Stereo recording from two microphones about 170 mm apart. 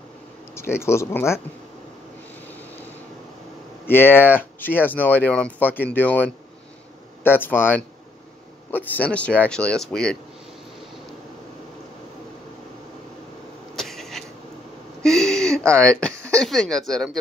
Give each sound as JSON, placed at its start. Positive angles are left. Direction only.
{"t": 0.6, "sound": "speech", "side_deg": 15}
{"t": 3.8, "sound": "speech", "side_deg": 15}
{"t": 13.7, "sound": "a sound", "side_deg": 0}
{"t": 15.7, "sound": "speech", "side_deg": 5}